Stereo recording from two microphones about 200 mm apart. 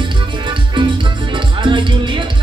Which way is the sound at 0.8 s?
25° right (ahead or behind).